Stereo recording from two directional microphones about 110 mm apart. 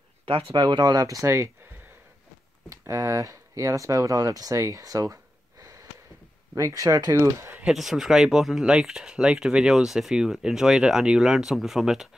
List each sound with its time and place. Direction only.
0.2 s speech: 55° right (ahead or behind); by 1.5 s 25° right (ahead or behind)
2.7 s speech: 30° right (ahead or behind)
7.6 s speech: 5° right (ahead or behind)